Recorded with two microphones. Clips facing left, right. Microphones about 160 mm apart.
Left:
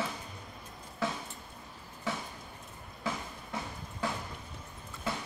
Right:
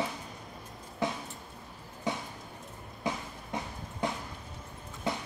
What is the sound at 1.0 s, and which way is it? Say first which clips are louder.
Music: right 2 dB; 20° right (ahead or behind).